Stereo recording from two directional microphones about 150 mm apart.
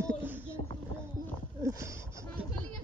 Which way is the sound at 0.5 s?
35° left (ahead or behind).